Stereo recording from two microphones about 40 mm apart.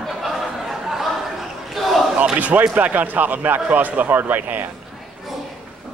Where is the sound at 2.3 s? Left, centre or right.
Right.